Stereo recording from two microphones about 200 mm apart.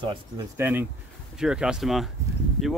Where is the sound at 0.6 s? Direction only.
10° right (ahead or behind).